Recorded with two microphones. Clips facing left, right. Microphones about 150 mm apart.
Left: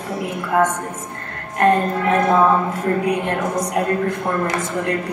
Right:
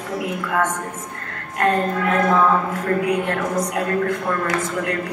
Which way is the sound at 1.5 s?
25° left (ahead or behind).